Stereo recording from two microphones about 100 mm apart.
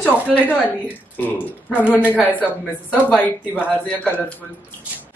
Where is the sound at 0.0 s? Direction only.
15° left (ahead or behind).